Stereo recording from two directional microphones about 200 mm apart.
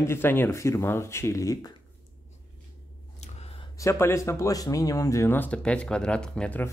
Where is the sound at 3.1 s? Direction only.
30° left (ahead or behind).